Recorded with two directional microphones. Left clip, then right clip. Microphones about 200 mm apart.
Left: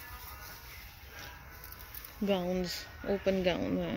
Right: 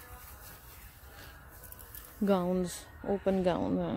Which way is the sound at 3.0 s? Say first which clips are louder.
Right 1 dB; 20° right (ahead or behind).